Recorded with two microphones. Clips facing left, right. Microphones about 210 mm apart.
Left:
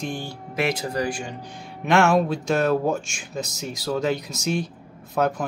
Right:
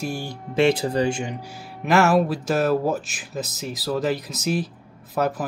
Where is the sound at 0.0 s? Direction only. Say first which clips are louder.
Right 1 dB; 10° right (ahead or behind).